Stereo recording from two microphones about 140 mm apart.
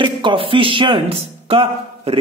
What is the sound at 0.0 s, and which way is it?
A man's voice, 35° right (ahead or behind).